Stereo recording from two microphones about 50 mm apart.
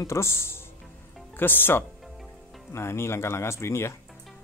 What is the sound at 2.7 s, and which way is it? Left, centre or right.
Speech, left.